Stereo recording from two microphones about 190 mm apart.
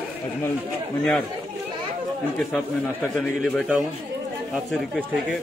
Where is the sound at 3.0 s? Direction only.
5° left (ahead or behind).